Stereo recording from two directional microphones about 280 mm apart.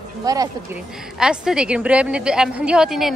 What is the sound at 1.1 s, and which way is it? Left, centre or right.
A woman's voice, centre.